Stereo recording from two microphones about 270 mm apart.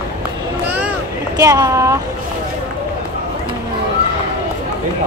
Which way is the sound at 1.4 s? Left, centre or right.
Centre.